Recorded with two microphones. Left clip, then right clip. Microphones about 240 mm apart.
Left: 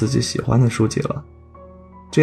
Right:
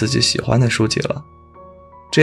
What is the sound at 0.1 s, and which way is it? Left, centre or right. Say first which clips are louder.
Speech: right 4 dB; centre.